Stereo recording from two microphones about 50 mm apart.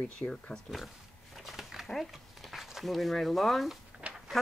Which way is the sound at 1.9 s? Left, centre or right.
Centre.